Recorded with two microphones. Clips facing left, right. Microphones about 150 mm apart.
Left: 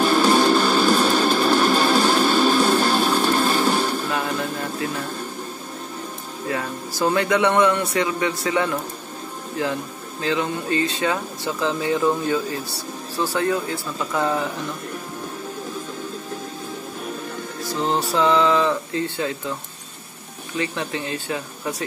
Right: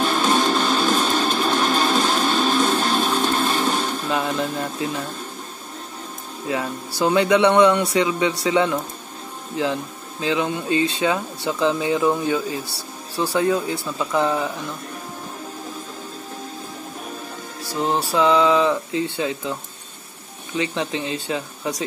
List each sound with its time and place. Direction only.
0.0 s music: 5° left (ahead or behind)
4.1 s music: 20° right (ahead or behind)
6.5 s speech: 15° right (ahead or behind)
10.2 s speech: 20° right (ahead or behind)
17.6 s speech: 10° right (ahead or behind)
20.5 s speech: 20° right (ahead or behind)